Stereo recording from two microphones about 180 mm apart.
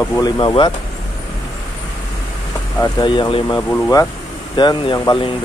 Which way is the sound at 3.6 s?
15° left (ahead or behind).